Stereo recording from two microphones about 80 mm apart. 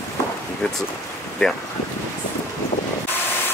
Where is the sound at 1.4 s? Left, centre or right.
Centre.